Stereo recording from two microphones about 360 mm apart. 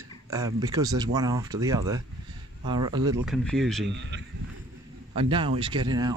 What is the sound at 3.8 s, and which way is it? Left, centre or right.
Speech, right.